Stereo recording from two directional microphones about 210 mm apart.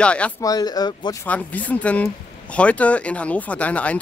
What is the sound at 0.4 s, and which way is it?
Speech, 20° left (ahead or behind).